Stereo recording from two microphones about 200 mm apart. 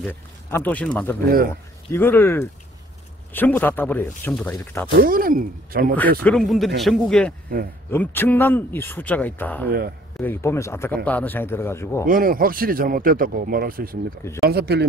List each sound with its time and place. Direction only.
0.0 s speech: 10° left (ahead or behind)
5.0 s speech: 45° right (ahead or behind)
6.2 s speech: centre (ahead or behind)
9.7 s speech: 50° right (ahead or behind)
10.1 s speech: 10° left (ahead or behind)
12.1 s speech: 45° right (ahead or behind)